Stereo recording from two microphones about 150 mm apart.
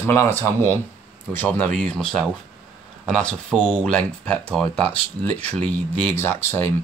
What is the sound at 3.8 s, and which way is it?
Speech, 5° left (ahead or behind).